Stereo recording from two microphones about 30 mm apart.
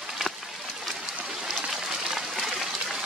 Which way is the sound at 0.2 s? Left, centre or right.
Centre.